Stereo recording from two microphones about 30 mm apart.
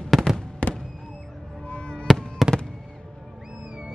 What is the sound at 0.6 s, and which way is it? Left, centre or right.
Fireworks, left.